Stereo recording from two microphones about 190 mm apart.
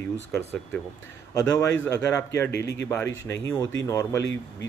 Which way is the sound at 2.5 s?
65° left (ahead or behind).